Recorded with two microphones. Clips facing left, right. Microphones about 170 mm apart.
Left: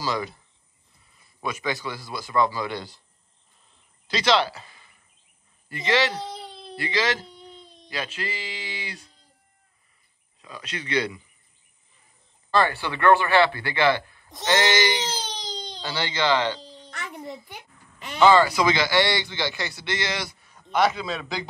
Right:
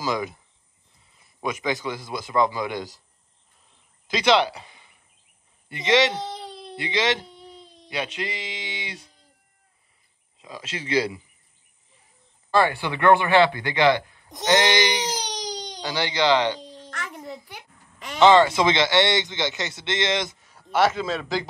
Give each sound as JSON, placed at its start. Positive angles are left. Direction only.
{"t": 0.0, "sound": "a man's voice", "side_deg": -15}
{"t": 4.1, "sound": "a man's voice", "side_deg": -15}
{"t": 6.2, "sound": "baby cry", "side_deg": 0}
{"t": 6.8, "sound": "a man's voice", "side_deg": -20}
{"t": 7.2, "sound": "baby cry", "side_deg": -5}
{"t": 7.9, "sound": "a man's voice", "side_deg": -20}
{"t": 10.4, "sound": "a man's voice", "side_deg": -25}
{"t": 12.4, "sound": "a man's voice", "side_deg": -10}
{"t": 16.7, "sound": "a sound", "side_deg": 0}
{"t": 17.9, "sound": "speech", "side_deg": 0}
{"t": 18.2, "sound": "a man's voice", "side_deg": -25}
{"t": 20.4, "sound": "a man's voice", "side_deg": -5}